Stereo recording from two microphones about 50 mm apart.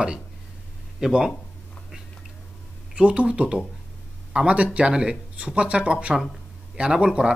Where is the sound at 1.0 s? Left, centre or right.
Centre.